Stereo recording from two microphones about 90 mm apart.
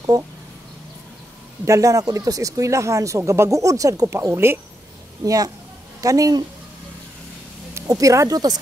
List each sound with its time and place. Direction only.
1.7 s speech: 35° right (ahead or behind)
5.2 s speech: 40° right (ahead or behind)
7.7 s speech: 40° right (ahead or behind)